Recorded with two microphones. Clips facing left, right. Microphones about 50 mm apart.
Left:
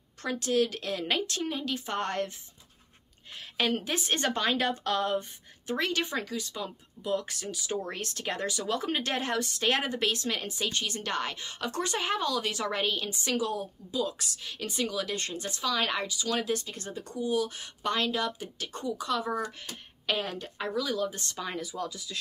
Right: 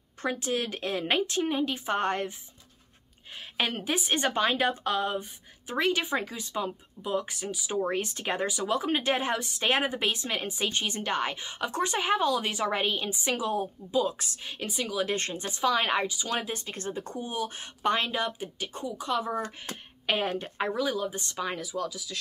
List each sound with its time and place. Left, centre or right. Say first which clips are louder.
0.2 s a woman's voice: left 2 dB; centre
3.5 s a woman's voice: even; centre
14.7 s speech: left 2 dB; centre
15.0 s a woman's voice: right 3 dB; right
16.6 s a woman's voice: right 4 dB; right; by 18.9 s centre
18.9 s a woman's voice: right 3 dB; right
19.4 s a woman's voice: even; right
20.9 s speech: even; centre